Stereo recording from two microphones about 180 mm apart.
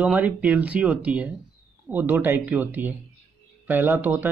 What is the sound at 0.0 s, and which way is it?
Speech, 10° right (ahead or behind).